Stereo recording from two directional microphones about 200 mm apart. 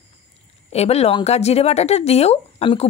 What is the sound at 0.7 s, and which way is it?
Speech, 30° left (ahead or behind).